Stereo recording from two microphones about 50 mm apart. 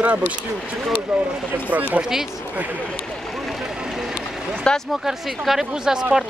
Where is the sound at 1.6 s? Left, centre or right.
Right.